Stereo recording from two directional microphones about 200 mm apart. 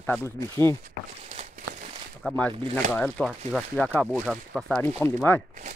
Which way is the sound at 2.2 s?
5° left (ahead or behind).